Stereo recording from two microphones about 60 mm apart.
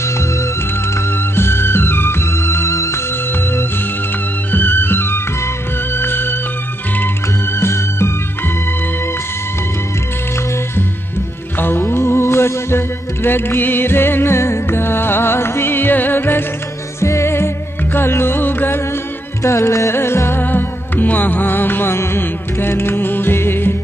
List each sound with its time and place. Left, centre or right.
0.0 s music: left
0.9 s music: left
4.5 s music: left
7.5 s music: left
11.5 s music: left
17.0 s music: left
19.4 s music: left
19.9 s music: left